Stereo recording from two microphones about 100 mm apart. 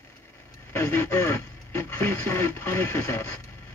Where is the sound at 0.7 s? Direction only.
30° left (ahead or behind).